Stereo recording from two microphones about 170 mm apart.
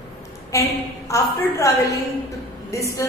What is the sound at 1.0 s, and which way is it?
A woman's voice, 15° left (ahead or behind).